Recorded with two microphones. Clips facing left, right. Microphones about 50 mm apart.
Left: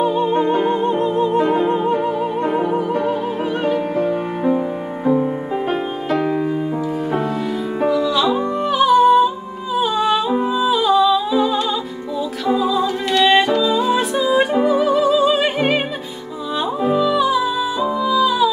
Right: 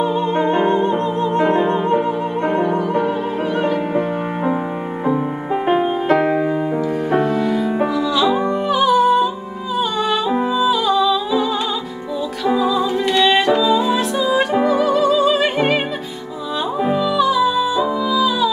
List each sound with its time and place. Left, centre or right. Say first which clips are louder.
0.0 s music: left 1 dB; centre
5.7 s music: right 8 dB; right
7.1 s music: right 4 dB; centre
16.9 s music: even; centre